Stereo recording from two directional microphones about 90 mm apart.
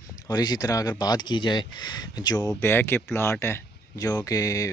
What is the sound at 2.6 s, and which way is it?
Speech, 25° left (ahead or behind).